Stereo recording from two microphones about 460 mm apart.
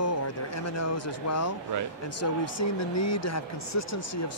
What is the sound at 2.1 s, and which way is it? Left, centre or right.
Speech, left.